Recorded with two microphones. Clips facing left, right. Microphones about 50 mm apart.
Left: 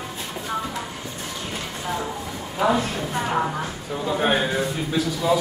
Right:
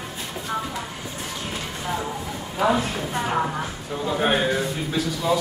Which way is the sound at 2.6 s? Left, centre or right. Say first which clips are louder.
Even; centre.